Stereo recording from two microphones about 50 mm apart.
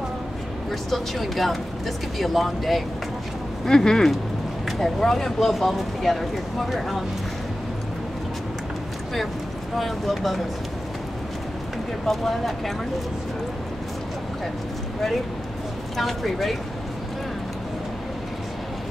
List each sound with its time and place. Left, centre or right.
0.7 s speech: centre
3.6 s speech: centre
9.8 s speech: centre
12.1 s speech: centre
16.0 s speech: centre